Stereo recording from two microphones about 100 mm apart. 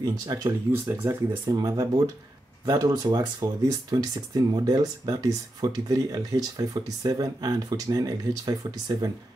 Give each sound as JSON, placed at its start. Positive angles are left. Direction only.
{"t": 0.0, "sound": "speech", "side_deg": -35}